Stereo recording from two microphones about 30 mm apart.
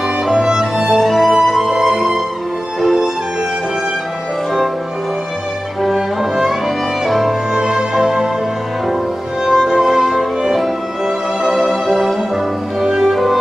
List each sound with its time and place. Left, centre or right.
0.3 s music: right
0.9 s music: centre
5.9 s music: centre
7.1 s music: centre
7.5 s music: right
9.4 s violin: right
11.5 s music: centre
12.8 s music: centre
13.1 s music: centre